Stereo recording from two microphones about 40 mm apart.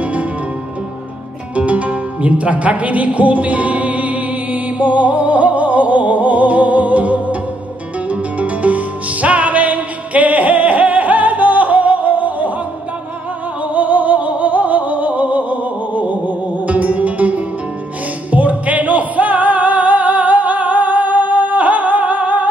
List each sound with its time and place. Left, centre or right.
0.0 s music: right
1.7 s music: right
13.7 s music: right